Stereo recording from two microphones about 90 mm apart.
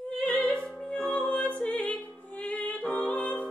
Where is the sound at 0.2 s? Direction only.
15° left (ahead or behind).